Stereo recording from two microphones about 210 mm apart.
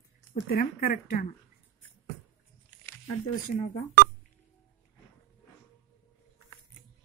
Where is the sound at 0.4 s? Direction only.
45° left (ahead or behind).